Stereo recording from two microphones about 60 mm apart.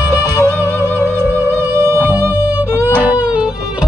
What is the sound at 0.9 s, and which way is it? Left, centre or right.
Music, left.